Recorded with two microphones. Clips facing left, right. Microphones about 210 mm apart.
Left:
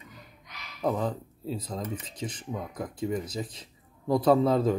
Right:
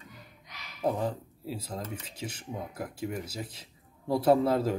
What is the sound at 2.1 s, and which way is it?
A man's voice, 10° right (ahead or behind).